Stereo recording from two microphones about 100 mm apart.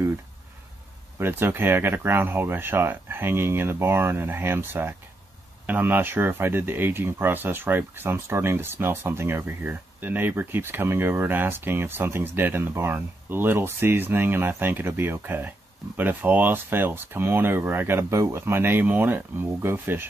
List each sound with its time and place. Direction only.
1.2 s speech: 25° right (ahead or behind)